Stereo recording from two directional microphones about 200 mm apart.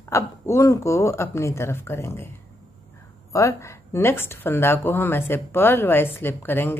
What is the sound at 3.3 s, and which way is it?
A woman's voice, 15° left (ahead or behind).